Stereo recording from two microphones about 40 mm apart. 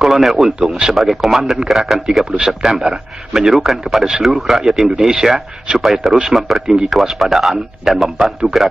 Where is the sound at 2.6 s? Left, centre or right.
Centre.